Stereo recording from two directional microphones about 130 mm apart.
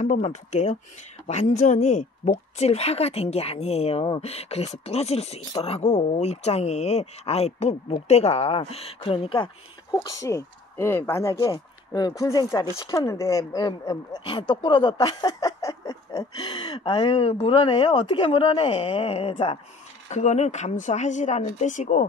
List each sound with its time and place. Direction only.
0.0 s speech: 65° left (ahead or behind); by 9.5 s 45° left (ahead or behind)
10.0 s speech: 25° left (ahead or behind); by 19.6 s 45° left (ahead or behind)
20.1 s speech: 60° left (ahead or behind)